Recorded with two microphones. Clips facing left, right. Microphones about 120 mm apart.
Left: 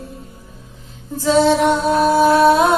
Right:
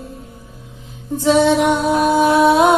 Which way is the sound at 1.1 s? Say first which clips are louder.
Right 1 dB; 20° right (ahead or behind).